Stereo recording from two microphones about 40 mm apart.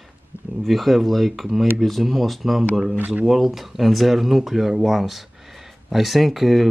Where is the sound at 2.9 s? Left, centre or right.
Right.